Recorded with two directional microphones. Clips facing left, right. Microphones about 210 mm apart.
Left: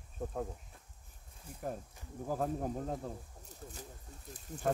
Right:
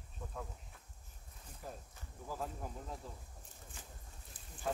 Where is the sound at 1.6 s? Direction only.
55° left (ahead or behind).